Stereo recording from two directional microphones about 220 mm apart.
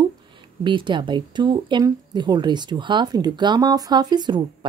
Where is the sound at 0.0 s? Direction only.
20° right (ahead or behind).